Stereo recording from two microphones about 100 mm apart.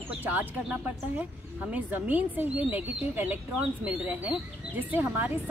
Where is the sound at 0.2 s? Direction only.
20° right (ahead or behind).